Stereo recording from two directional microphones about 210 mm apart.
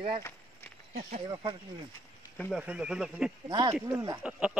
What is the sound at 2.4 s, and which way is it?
Speech, 5° right (ahead or behind).